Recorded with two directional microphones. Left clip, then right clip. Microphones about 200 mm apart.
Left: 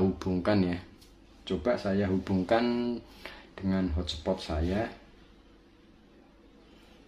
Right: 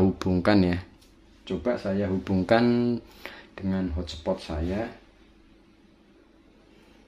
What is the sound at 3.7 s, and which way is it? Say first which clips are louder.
Speech: even; 10° right (ahead or behind).